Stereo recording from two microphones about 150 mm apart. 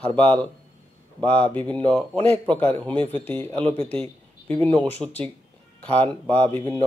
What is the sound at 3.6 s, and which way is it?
Speech, 35° right (ahead or behind).